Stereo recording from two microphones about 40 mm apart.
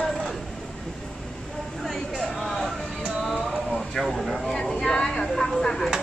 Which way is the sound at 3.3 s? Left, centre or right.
Centre.